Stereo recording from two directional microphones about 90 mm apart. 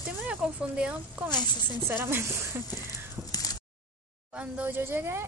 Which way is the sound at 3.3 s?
45° left (ahead or behind).